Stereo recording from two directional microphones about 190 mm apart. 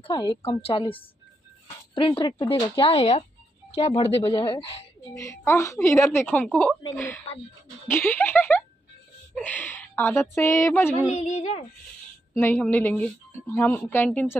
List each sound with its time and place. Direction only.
0.0 s speech: 25° left (ahead or behind)
5.1 s speech: 15° left (ahead or behind)
7.9 s speech: 10° left (ahead or behind)
11.1 s speech: 35° left (ahead or behind)
12.4 s speech: 10° left (ahead or behind)